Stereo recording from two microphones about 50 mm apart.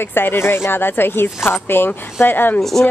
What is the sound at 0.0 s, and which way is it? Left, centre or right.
Speech, left.